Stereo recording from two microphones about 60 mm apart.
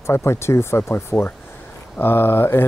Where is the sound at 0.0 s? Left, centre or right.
Left.